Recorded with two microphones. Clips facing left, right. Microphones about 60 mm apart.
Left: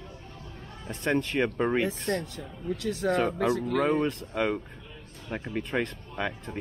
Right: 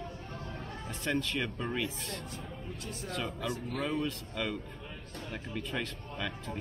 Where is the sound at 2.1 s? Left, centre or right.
Left.